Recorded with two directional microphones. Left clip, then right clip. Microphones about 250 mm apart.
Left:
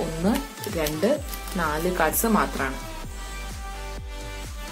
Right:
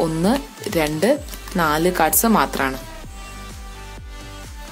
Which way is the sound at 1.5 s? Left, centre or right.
Right.